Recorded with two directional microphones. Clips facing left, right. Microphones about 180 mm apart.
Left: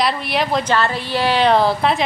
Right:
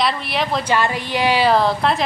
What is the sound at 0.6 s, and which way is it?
A woman's voice, 10° right (ahead or behind).